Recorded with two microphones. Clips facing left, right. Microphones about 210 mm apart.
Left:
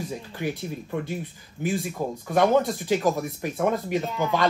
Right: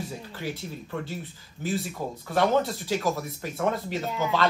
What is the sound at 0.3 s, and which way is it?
Speech, 15° left (ahead or behind).